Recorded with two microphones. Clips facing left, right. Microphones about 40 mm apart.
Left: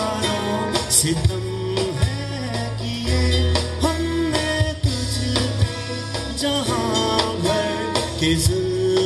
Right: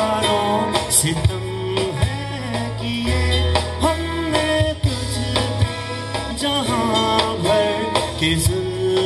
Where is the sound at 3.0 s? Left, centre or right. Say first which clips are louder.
Even; right.